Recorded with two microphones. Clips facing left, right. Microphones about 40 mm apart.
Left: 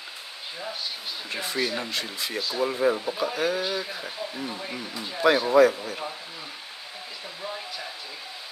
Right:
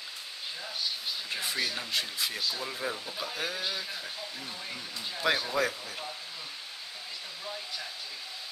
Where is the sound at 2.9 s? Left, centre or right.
Left.